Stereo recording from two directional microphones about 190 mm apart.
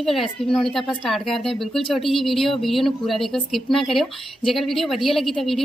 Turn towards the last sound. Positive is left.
turn(degrees=0)  # may be behind; listen again after turning